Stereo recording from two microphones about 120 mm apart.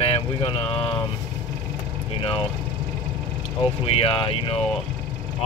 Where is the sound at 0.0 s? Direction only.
50° left (ahead or behind).